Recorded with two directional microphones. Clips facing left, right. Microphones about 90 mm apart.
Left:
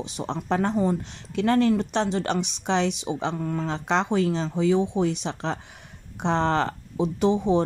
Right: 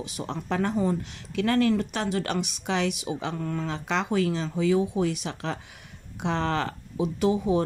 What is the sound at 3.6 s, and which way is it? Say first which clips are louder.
Speech: left 5 dB; 30° left (ahead or behind).